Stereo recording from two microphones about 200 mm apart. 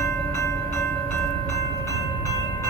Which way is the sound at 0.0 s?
15° left (ahead or behind).